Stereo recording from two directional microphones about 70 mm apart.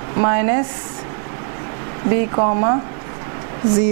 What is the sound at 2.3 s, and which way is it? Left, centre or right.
Speech, centre.